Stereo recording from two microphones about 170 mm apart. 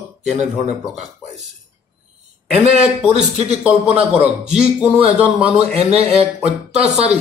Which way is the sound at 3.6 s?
5° right (ahead or behind).